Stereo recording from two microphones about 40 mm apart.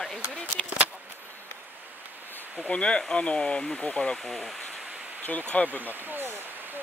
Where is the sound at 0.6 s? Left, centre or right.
Right.